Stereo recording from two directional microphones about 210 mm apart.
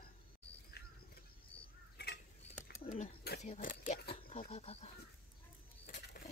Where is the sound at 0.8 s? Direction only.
50° left (ahead or behind).